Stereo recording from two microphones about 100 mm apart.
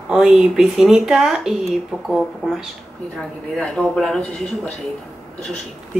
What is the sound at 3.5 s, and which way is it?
Speech, 10° left (ahead or behind).